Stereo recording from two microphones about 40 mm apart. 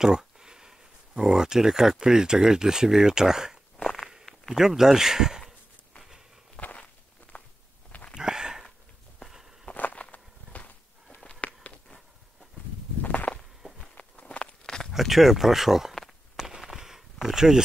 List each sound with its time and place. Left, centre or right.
0.0 s speech: centre
3.8 s walk: centre
4.6 s speech: centre
7.3 s walk: left
8.1 s a sound: centre
9.9 s walk: left
11.2 s a sound: left
13.0 s walk: left
14.4 s walk: left
14.9 s speech: centre
16.3 s a sound: centre